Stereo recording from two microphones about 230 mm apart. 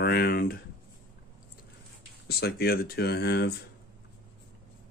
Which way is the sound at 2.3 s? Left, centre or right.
Left.